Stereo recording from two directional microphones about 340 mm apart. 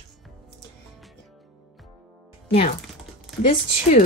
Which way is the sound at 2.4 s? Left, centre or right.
Centre.